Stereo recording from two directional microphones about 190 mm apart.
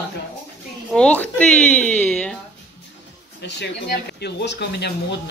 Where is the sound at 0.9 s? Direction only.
5° left (ahead or behind).